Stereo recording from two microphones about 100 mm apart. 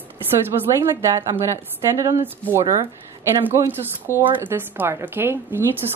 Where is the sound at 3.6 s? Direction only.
20° right (ahead or behind).